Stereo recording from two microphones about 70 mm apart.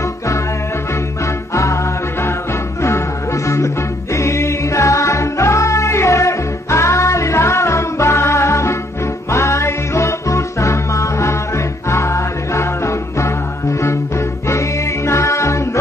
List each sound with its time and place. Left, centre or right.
1.5 s music: left
3.4 s music: left
15.0 s music: left